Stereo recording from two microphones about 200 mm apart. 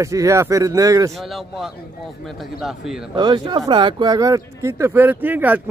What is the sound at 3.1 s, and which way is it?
Speech, 20° right (ahead or behind).